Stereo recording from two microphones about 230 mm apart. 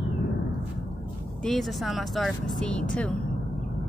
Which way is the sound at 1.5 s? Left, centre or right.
Centre.